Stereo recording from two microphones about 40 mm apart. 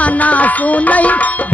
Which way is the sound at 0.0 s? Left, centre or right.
Left.